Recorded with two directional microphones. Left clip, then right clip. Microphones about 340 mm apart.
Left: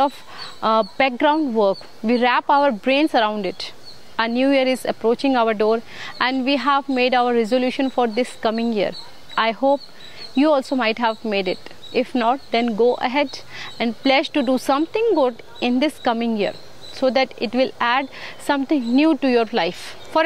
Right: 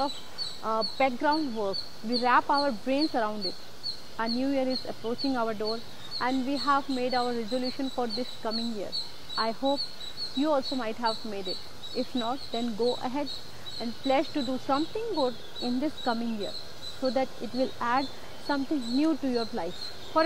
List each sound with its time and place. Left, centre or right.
0.6 s a woman's voice: left